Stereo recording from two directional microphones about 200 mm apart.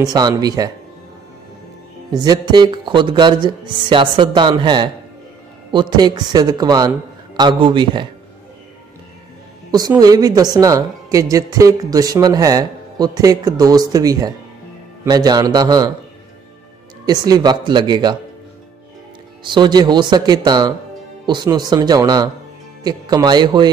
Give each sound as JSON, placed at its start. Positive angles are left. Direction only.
{"t": 0.0, "sound": "speech", "side_deg": -20}
{"t": 2.1, "sound": "speech", "side_deg": -20}
{"t": 9.7, "sound": "a woman's voice", "side_deg": -20}
{"t": 17.0, "sound": "speech", "side_deg": -20}
{"t": 19.4, "sound": "speech", "side_deg": -20}